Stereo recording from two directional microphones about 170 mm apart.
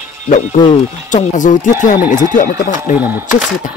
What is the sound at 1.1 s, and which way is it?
Speech, 45° left (ahead or behind).